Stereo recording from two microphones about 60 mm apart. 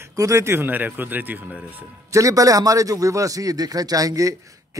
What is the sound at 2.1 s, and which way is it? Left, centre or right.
A man's voice, right.